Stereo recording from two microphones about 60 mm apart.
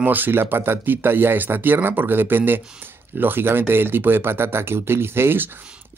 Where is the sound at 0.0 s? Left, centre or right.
Right.